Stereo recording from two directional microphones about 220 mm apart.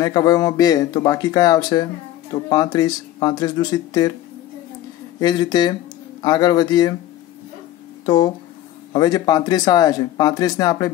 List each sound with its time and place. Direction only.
0.0 s speech: 15° left (ahead or behind)
5.2 s speech: 20° left (ahead or behind)
8.0 s speech: 20° left (ahead or behind)